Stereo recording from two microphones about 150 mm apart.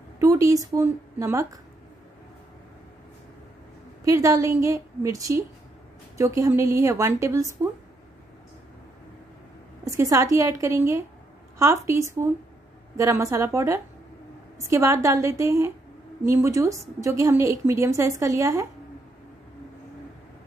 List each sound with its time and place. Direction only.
0.2 s a woman's voice: 20° right (ahead or behind)
4.0 s a woman's voice: 20° right (ahead or behind)
9.8 s a woman's voice: 20° right (ahead or behind)